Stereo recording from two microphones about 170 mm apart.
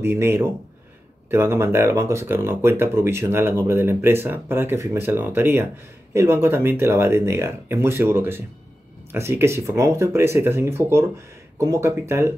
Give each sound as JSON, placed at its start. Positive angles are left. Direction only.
{"t": 0.0, "sound": "speech", "side_deg": -15}